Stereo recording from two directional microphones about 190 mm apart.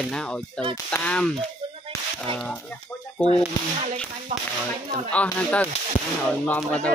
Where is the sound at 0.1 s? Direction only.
5° left (ahead or behind).